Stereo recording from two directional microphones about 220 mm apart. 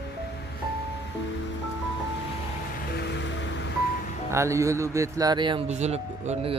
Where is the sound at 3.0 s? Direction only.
55° left (ahead or behind).